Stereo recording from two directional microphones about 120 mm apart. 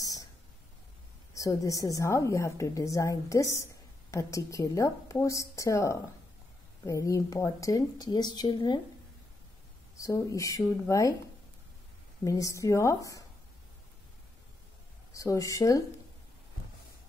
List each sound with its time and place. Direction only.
0.0 s a sound: 30° left (ahead or behind)
1.3 s a woman's voice: 30° left (ahead or behind)
9.9 s a woman's voice: 25° left (ahead or behind)
12.3 s a woman's voice: 25° left (ahead or behind)
15.1 s a woman's voice: 30° left (ahead or behind)